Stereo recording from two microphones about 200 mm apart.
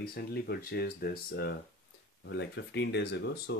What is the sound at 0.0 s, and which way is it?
Speech, 50° left (ahead or behind).